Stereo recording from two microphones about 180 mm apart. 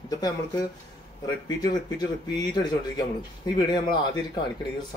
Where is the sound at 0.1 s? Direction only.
20° left (ahead or behind).